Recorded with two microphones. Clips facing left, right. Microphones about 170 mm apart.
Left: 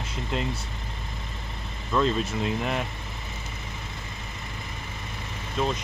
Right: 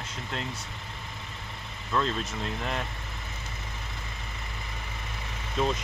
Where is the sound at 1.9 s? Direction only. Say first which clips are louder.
Left 5 dB; 10° left (ahead or behind).